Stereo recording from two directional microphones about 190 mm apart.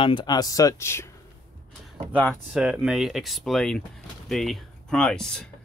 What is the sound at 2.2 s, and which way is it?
Speech, centre (ahead or behind).